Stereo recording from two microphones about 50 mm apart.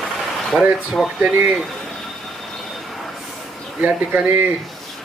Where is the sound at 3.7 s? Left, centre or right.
Right.